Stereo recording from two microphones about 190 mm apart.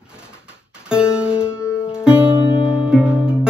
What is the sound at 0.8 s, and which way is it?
Music, 5° right (ahead or behind).